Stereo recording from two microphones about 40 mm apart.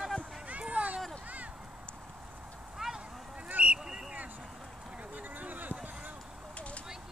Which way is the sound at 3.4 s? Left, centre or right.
Right.